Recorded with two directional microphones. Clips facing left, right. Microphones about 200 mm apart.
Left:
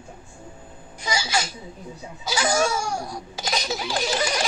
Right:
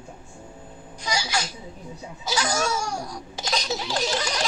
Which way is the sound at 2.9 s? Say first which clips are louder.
Left 2 dB; 25° left (ahead or behind).